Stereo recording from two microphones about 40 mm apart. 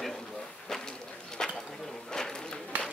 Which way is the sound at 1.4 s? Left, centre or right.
Centre.